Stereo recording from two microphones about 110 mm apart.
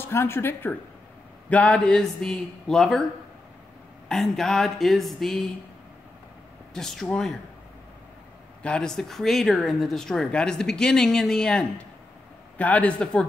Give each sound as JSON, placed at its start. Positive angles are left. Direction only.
{"t": 0.0, "sound": "a man's voice", "side_deg": 20}
{"t": 4.1, "sound": "speech", "side_deg": 0}
{"t": 6.7, "sound": "speech", "side_deg": 5}
{"t": 8.6, "sound": "a man's voice", "side_deg": 5}